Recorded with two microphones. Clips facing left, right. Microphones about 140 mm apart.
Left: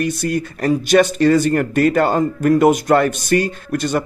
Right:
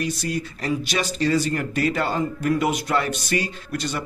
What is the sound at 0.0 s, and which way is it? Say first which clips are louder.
Speech: left 6 dB; 55° left (ahead or behind).